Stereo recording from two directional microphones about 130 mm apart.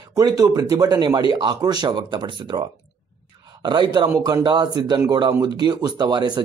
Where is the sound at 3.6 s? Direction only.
35° right (ahead or behind).